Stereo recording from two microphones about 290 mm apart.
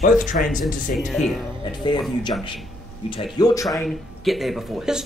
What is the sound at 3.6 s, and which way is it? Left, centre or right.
Speech, centre.